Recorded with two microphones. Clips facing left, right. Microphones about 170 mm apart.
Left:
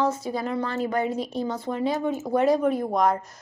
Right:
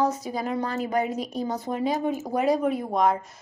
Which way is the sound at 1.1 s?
30° left (ahead or behind).